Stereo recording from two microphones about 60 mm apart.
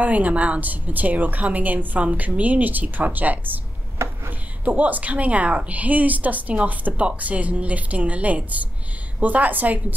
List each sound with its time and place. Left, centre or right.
0.0 s speech: right